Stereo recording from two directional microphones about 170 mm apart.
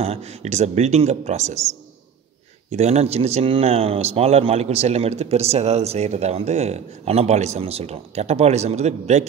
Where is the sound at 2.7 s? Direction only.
40° right (ahead or behind).